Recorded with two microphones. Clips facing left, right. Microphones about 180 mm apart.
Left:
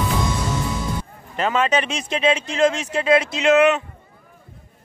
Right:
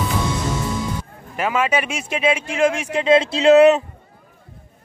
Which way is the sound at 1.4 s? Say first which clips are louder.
Even; 10° right (ahead or behind).